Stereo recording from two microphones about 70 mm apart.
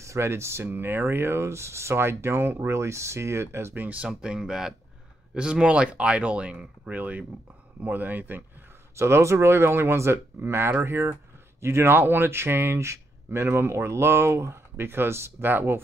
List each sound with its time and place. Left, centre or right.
0.0 s speech: right
3.7 s speech: right
4.1 s speech: centre; by 8.5 s right
8.9 s speech: right